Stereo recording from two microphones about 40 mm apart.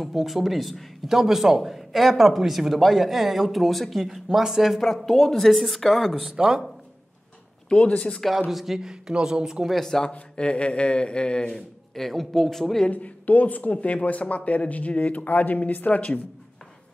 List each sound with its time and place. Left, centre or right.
0.1 s speech: centre
4.0 s a man's voice: centre
4.7 s speech: centre
6.3 s a man's voice: centre
8.5 s a man's voice: centre
9.7 s speech: centre
10.3 s speech: left
11.9 s speech: centre
12.9 s speech: left